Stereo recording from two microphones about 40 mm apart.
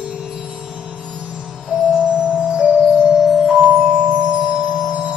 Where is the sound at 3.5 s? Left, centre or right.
Right.